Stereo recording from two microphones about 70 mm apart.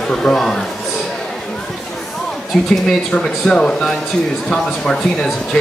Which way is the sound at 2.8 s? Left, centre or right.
Centre.